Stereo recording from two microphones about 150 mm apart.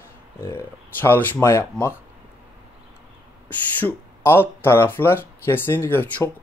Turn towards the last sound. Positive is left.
turn(degrees=15)  # may be behind; listen again after turning